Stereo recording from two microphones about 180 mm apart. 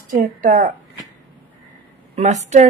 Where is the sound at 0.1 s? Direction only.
50° right (ahead or behind).